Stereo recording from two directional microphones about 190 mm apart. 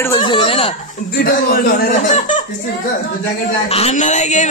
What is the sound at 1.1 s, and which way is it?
Speech, 50° left (ahead or behind).